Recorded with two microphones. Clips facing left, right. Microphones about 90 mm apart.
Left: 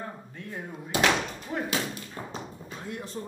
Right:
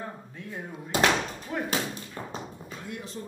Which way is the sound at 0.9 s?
30° right (ahead or behind).